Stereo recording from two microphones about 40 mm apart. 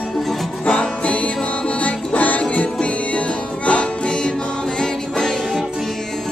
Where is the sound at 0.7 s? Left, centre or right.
Left.